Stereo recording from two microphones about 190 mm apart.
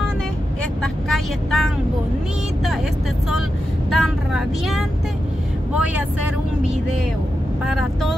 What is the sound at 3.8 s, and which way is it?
Speech, centre (ahead or behind).